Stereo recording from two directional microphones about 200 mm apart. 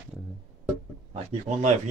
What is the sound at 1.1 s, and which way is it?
Speech, 35° right (ahead or behind).